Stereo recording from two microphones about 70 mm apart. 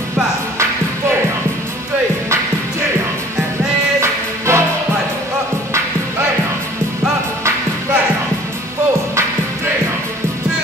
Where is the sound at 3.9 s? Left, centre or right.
Right.